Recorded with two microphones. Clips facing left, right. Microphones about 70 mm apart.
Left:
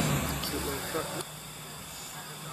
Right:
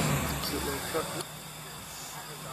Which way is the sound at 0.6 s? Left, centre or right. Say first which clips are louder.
Right 2 dB; right.